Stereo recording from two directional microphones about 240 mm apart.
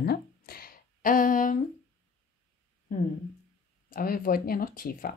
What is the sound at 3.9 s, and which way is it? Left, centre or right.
A woman's voice, left.